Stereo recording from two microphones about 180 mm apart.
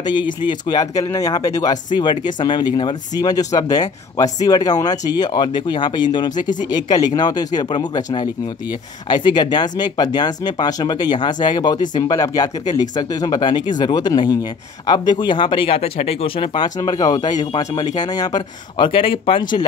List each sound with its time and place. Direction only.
0.0 s speech: 25° left (ahead or behind)